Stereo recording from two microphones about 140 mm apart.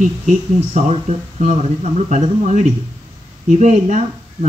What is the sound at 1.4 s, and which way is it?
Speech, 55° right (ahead or behind).